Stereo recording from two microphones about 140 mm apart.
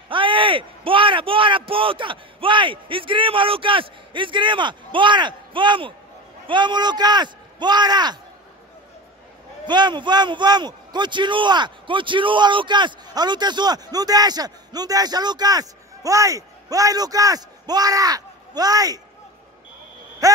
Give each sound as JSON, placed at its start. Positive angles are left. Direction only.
{"t": 0.1, "sound": "speech", "side_deg": -35}
{"t": 9.7, "sound": "a man's voice", "side_deg": -30}
{"t": 20.2, "sound": "a sound", "side_deg": -25}